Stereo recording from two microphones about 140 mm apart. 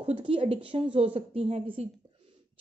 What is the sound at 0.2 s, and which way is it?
A woman's voice, 40° right (ahead or behind).